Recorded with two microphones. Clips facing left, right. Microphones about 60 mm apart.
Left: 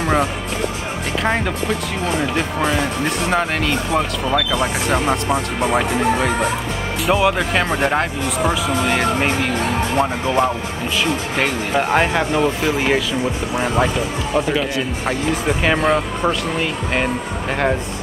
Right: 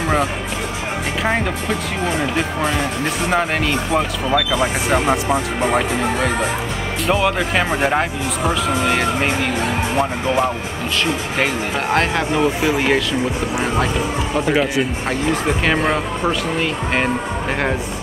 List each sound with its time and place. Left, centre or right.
1.2 s speech: centre
3.3 s speech: centre
7.1 s speech: centre
11.3 s speech: centre
15.4 s speech: centre